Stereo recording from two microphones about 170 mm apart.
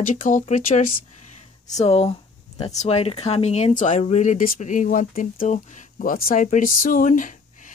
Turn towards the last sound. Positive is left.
turn(degrees=50)  # may be behind; listen again after turning